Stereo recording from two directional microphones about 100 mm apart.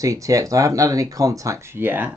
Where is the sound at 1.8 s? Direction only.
20° right (ahead or behind).